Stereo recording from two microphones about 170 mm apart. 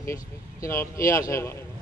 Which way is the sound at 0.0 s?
15° left (ahead or behind).